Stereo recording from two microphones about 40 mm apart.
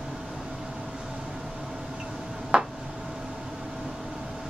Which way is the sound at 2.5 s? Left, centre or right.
Right.